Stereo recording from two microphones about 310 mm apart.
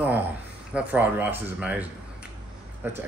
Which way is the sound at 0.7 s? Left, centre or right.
Centre.